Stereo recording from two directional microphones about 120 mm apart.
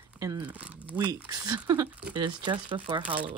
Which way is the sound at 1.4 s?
30° right (ahead or behind).